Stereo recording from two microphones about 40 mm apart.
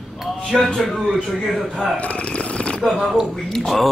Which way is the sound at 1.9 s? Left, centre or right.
Left.